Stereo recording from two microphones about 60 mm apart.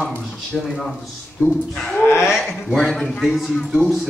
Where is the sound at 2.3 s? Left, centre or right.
Centre.